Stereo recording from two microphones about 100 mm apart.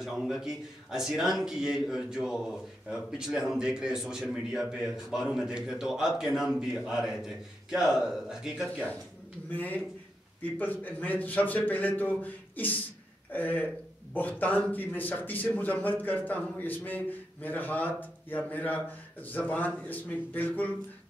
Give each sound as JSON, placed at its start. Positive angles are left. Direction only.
{"t": 0.0, "sound": "a man's voice", "side_deg": -5}
{"t": 9.5, "sound": "a man's voice", "side_deg": 15}